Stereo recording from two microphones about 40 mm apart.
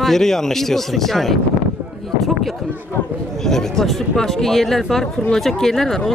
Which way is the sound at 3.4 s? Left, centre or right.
Centre.